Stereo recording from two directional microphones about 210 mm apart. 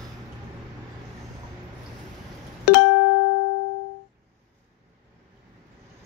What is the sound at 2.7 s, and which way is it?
Music, 55° left (ahead or behind).